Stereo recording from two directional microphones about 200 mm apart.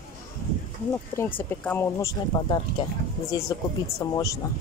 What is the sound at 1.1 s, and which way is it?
Speech, 10° left (ahead or behind).